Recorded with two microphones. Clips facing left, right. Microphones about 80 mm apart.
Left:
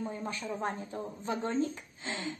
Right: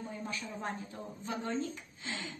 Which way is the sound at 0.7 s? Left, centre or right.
Left.